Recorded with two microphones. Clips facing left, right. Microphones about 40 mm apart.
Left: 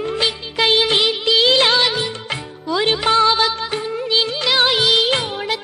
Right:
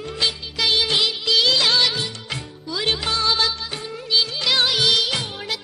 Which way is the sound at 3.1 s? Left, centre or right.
Left.